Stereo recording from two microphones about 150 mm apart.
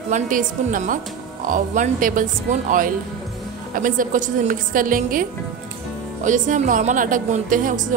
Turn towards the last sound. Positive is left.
turn(degrees=-60)  # may be behind; listen again after turning